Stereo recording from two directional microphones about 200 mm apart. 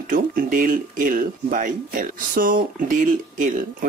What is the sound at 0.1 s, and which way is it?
Speech, 45° right (ahead or behind).